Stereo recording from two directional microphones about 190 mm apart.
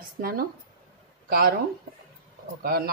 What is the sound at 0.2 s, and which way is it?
Speech, 50° right (ahead or behind).